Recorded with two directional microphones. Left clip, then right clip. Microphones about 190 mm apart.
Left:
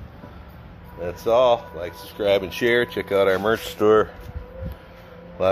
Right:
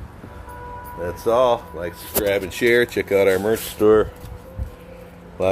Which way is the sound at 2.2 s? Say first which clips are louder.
Left 2 dB; 50° left (ahead or behind).